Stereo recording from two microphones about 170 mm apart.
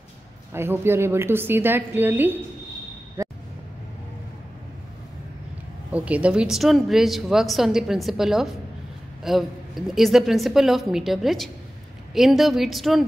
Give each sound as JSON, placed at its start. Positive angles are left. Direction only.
{"t": 0.5, "sound": "a woman's voice", "side_deg": -15}
{"t": 3.2, "sound": "a sound", "side_deg": -15}
{"t": 5.9, "sound": "a woman's voice", "side_deg": -10}